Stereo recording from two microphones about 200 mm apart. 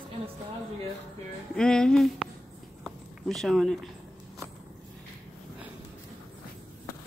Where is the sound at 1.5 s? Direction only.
5° left (ahead or behind).